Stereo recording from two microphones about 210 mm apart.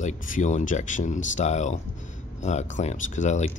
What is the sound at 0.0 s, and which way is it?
Speech, 35° left (ahead or behind).